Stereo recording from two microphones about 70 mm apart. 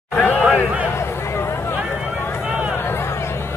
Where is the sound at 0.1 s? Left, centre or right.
Left.